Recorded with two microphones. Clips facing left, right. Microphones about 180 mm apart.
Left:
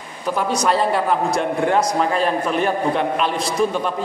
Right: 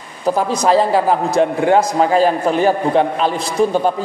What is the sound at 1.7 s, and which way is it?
A man's voice, 35° right (ahead or behind).